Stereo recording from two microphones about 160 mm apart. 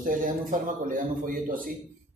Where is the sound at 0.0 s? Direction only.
60° right (ahead or behind).